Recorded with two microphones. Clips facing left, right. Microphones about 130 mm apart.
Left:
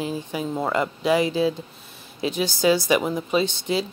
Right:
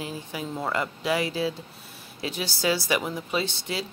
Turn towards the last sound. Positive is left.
turn(degrees=20)  # may be behind; listen again after turning